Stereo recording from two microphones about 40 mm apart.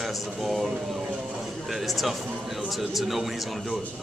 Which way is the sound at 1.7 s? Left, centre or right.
Centre.